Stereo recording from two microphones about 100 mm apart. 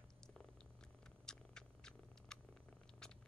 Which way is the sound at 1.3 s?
5° left (ahead or behind).